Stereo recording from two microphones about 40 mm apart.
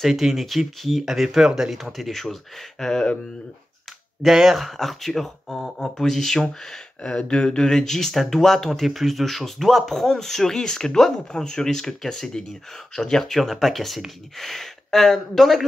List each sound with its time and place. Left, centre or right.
0.0 s speech: centre
4.3 s speech: centre
7.0 s speech: left
13.2 s speech: centre